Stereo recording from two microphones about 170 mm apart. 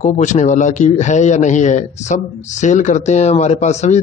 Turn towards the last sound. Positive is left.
turn(degrees=40)  # may be behind; listen again after turning